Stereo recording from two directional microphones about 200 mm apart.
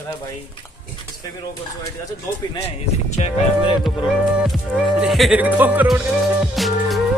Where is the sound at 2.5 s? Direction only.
35° left (ahead or behind).